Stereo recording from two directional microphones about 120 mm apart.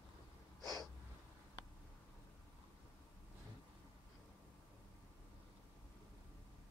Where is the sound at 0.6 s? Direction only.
30° left (ahead or behind).